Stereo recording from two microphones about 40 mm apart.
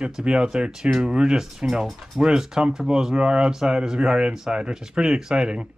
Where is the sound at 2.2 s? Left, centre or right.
Centre.